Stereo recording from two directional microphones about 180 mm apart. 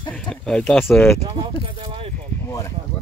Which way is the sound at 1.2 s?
30° right (ahead or behind).